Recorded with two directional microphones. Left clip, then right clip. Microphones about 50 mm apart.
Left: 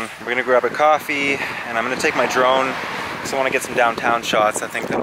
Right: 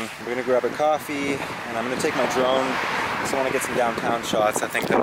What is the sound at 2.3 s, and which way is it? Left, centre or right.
Speech, left.